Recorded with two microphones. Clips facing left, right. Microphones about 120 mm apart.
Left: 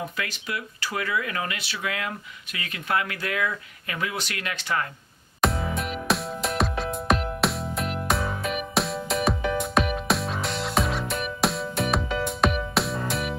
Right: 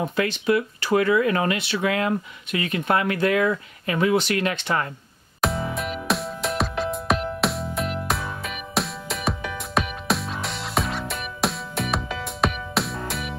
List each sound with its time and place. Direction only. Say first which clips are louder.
0.0 s speech: right 9 dB; 25° right (ahead or behind)
5.4 s music: even; centre (ahead or behind)